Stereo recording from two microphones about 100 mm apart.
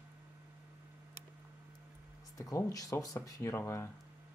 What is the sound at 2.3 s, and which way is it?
Speech, 35° left (ahead or behind).